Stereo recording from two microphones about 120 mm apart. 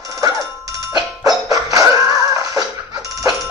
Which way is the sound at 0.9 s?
30° right (ahead or behind).